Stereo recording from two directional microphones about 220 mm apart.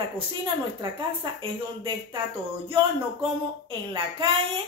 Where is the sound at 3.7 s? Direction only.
25° right (ahead or behind).